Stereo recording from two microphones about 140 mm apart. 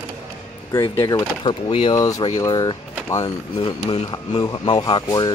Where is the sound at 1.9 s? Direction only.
25° left (ahead or behind).